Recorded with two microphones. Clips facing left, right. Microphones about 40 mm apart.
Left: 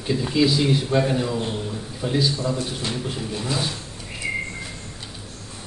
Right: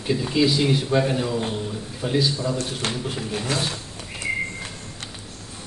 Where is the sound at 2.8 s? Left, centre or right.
Right.